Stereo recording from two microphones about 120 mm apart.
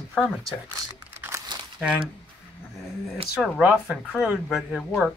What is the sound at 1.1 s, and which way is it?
Crumpling, 20° right (ahead or behind).